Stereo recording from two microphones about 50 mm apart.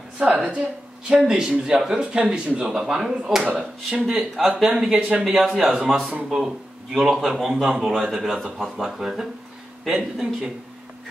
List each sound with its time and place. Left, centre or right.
0.2 s a man's voice: centre
7.6 s speech: centre